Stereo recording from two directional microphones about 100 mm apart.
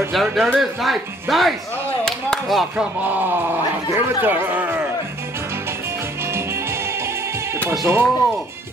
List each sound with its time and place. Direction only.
0.1 s speech: centre (ahead or behind)
2.0 s chop: 5° left (ahead or behind)
2.8 s speech: 15° right (ahead or behind)
7.8 s speech: 25° right (ahead or behind)